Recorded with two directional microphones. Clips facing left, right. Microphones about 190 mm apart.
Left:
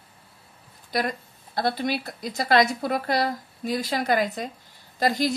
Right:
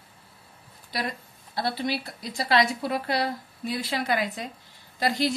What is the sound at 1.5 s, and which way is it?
A woman's voice, 50° left (ahead or behind).